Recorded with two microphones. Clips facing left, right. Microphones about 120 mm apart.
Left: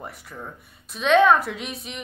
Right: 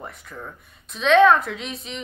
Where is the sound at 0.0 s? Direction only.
10° left (ahead or behind).